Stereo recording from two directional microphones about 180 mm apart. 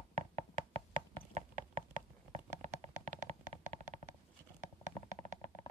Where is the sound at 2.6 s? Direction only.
45° right (ahead or behind).